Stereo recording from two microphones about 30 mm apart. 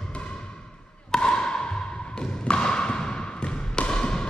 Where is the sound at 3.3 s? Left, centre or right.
Left.